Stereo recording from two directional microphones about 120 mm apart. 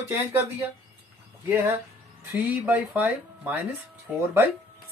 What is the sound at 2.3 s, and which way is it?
Speech, 15° right (ahead or behind).